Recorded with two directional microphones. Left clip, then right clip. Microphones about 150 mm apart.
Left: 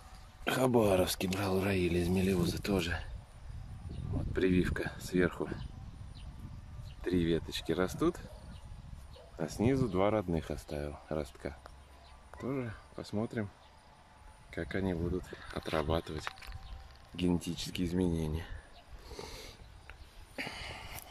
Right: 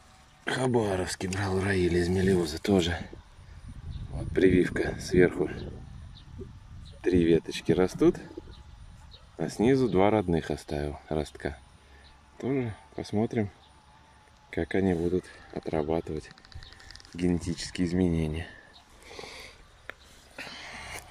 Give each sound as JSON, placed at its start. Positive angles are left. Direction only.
{"t": 0.4, "sound": "speech", "side_deg": 15}
{"t": 2.3, "sound": "speech", "side_deg": -10}
{"t": 4.3, "sound": "speech", "side_deg": -10}
{"t": 7.0, "sound": "speech", "side_deg": -5}
{"t": 9.4, "sound": "speech", "side_deg": -5}
{"t": 14.5, "sound": "speech", "side_deg": -10}
{"t": 17.4, "sound": "speech", "side_deg": 5}
{"t": 19.1, "sound": "sniff", "side_deg": 20}
{"t": 20.3, "sound": "a sound", "side_deg": 40}